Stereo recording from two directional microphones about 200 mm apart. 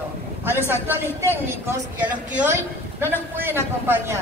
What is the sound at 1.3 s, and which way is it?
A woman's voice, 10° right (ahead or behind).